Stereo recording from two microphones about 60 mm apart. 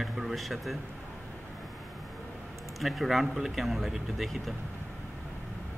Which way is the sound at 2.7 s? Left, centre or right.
Centre.